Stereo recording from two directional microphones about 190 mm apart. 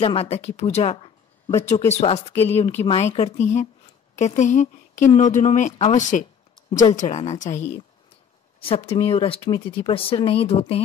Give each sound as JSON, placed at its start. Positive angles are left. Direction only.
{"t": 0.0, "sound": "speech", "side_deg": 30}
{"t": 8.5, "sound": "speech", "side_deg": 30}